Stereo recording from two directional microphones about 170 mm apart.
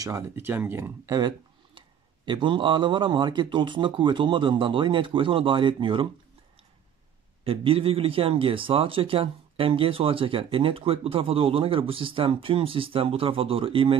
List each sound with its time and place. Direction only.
0.0 s speech: 15° right (ahead or behind)
7.4 s a man's voice: 35° right (ahead or behind)